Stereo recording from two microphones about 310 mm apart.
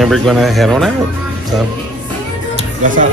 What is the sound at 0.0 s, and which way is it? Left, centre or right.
Speech, centre.